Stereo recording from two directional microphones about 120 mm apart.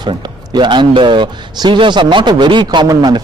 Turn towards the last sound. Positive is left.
turn(degrees=-35)  # may be behind; listen again after turning